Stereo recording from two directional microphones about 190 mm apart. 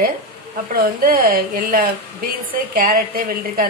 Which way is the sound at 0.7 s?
50° right (ahead or behind).